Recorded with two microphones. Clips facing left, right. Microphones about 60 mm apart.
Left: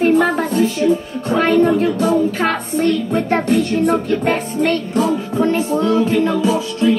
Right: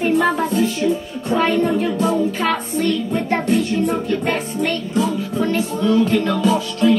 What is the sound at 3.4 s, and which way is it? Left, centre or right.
Speech, left.